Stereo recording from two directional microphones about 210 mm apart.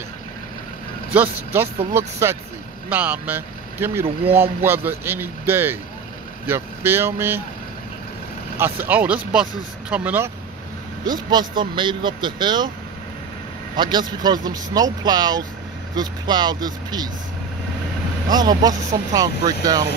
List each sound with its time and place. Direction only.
1.1 s speech: 10° right (ahead or behind)
8.5 s speech: 10° right (ahead or behind)
11.1 s speech: 20° right (ahead or behind)
13.7 s speech: 20° right (ahead or behind)
18.3 s speech: 20° right (ahead or behind)